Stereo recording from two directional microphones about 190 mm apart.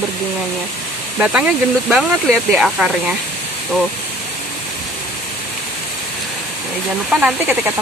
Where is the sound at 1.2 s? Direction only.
5° right (ahead or behind).